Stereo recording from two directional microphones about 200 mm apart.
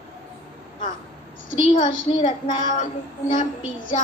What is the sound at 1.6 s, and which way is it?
Speech, 30° left (ahead or behind).